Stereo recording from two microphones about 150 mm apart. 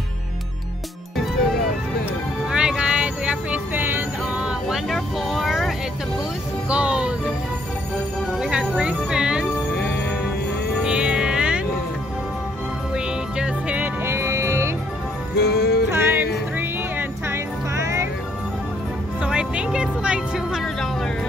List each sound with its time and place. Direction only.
2.5 s music: 5° right (ahead or behind)
8.4 s music: 5° right (ahead or behind)
10.8 s music: 5° right (ahead or behind)
12.9 s music: 5° right (ahead or behind)
15.4 s music: 90° left
15.9 s music: 15° right (ahead or behind)
19.2 s music: 5° right (ahead or behind)